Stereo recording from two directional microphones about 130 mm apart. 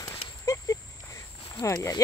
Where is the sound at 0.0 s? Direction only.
25° left (ahead or behind).